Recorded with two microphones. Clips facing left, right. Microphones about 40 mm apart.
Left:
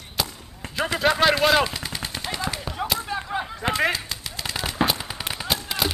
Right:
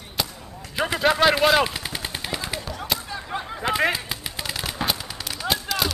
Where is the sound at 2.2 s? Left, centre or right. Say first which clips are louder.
Left 4 dB; centre.